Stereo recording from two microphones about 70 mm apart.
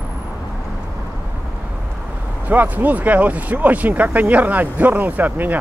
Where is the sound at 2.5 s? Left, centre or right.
Right.